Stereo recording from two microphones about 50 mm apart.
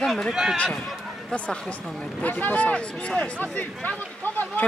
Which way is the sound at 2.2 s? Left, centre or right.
Left.